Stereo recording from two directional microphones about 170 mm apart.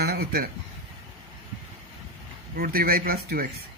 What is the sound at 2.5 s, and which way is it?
Speech, 60° right (ahead or behind).